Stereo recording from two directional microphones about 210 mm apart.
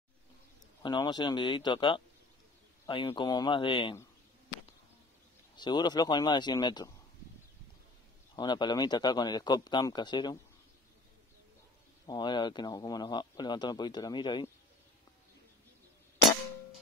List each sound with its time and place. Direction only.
0.8 s speech: 20° left (ahead or behind)
5.6 s speech: 20° left (ahead or behind)
8.4 s speech: 20° left (ahead or behind)
12.1 s speech: 20° left (ahead or behind)